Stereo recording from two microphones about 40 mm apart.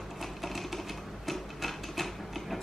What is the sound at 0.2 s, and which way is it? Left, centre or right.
Sewing machine, centre.